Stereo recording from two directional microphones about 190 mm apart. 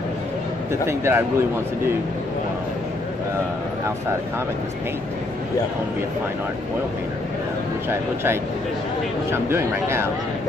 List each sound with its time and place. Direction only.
0.8 s speech: 15° right (ahead or behind)
9.3 s speech: 15° right (ahead or behind)